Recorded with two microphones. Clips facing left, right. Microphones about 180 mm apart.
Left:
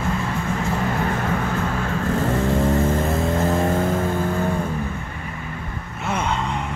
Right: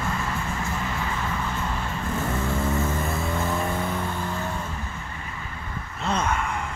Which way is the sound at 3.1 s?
45° left (ahead or behind).